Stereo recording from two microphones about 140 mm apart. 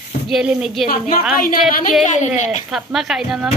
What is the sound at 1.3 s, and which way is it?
Speech, 80° left.